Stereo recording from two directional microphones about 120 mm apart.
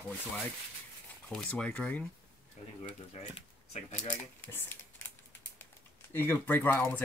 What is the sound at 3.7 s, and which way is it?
Speech, 75° left (ahead or behind).